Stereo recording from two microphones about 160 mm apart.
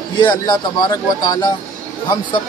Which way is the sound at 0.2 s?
30° left (ahead or behind).